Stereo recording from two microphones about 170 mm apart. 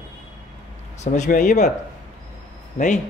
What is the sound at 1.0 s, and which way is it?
Speech, 45° left (ahead or behind).